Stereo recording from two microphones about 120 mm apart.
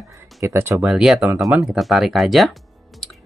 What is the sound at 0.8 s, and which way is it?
Speech, 5° right (ahead or behind).